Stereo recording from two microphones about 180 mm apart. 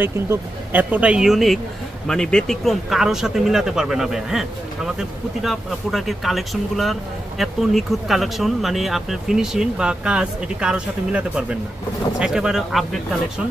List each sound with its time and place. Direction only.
0.0 s speech: 10° right (ahead or behind)